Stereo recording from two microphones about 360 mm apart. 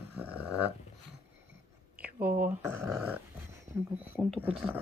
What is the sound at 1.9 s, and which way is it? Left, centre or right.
Dog, centre.